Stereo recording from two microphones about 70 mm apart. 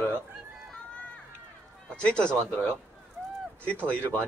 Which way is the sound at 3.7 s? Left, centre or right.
Left.